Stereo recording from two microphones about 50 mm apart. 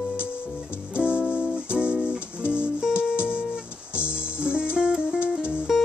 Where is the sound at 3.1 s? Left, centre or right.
Left.